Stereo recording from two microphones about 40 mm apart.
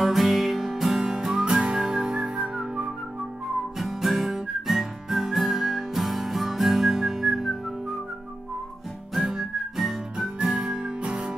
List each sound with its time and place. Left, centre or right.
0.0 s music: centre
1.4 s whistling: right
1.8 s music: right
3.8 s music: centre
9.2 s whistling: centre
10.1 s music: right